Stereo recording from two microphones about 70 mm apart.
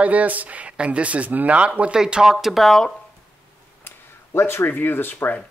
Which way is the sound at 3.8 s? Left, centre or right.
Left.